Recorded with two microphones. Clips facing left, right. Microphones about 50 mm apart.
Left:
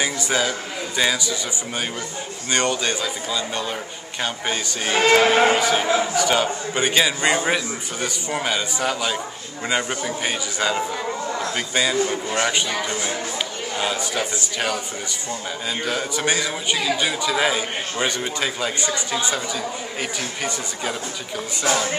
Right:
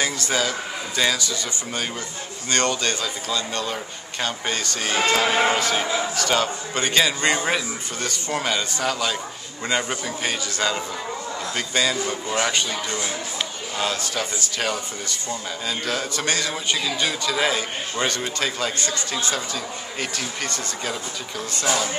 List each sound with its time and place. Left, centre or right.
0.0 s a man's voice: centre
2.5 s a man's voice: centre
5.1 s speech: left
5.4 s a man's voice: centre
13.7 s a man's voice: centre
15.8 s a man's voice: centre